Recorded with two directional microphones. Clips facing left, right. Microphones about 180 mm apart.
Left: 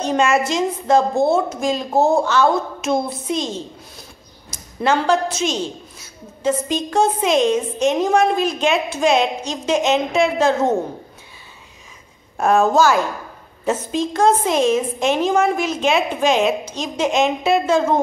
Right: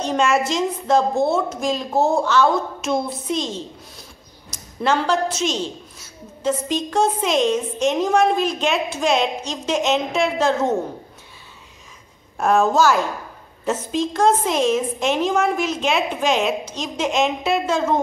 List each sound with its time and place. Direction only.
0.0 s a woman's voice: 5° left (ahead or behind)
12.4 s a woman's voice: centre (ahead or behind)